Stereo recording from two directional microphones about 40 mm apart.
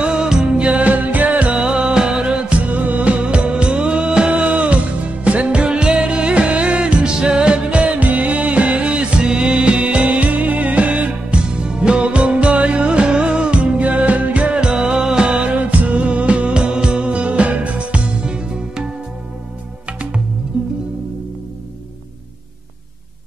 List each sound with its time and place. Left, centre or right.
0.0 s music: right
0.7 s music: right
1.6 s music: right
15.5 s music: right
19.9 s music: right
20.5 s music: centre